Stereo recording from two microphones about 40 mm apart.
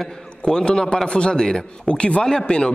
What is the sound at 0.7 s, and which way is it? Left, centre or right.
Speech, left.